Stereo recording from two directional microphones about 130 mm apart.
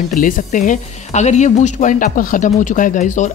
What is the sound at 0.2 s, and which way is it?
Speech, 80° left.